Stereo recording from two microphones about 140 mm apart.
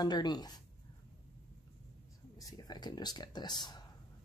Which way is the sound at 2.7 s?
30° left (ahead or behind).